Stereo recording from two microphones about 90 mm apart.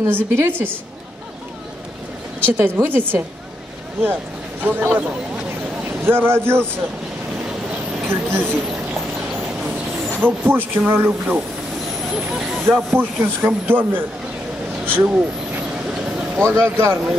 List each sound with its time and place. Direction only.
0.0 s speech: 25° right (ahead or behind)
2.4 s speech: 25° right (ahead or behind)
4.6 s speech: 20° right (ahead or behind)
8.1 s speech: 25° right (ahead or behind)
9.6 s a sound: 5° right (ahead or behind)
10.2 s speech: 20° right (ahead or behind)
12.1 s speech: 10° right (ahead or behind)
12.6 s speech: 25° right (ahead or behind)
14.9 s vehicle: 15° right (ahead or behind)
16.3 s speech: 25° right (ahead or behind)